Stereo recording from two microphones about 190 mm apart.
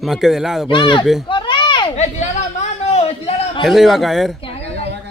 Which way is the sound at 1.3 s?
25° left (ahead or behind).